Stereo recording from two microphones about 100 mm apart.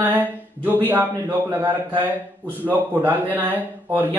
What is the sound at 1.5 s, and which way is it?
Speech, 20° right (ahead or behind).